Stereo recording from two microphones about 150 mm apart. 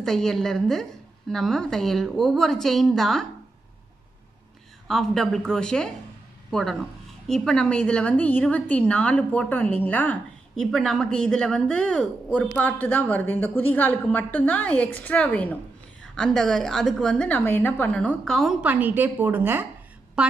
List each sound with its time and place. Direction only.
0.0 s a woman's voice: 5° left (ahead or behind)
4.8 s a woman's voice: centre (ahead or behind)